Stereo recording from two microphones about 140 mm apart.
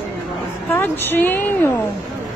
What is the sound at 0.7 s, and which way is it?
A woman's voice, 15° left (ahead or behind).